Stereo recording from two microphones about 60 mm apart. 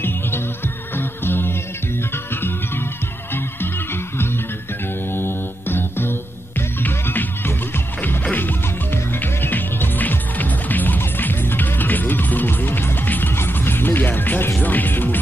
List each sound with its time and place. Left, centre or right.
0.9 s music: left
5.1 s music: left